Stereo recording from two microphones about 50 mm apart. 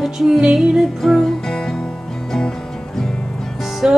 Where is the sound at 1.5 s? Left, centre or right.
Centre.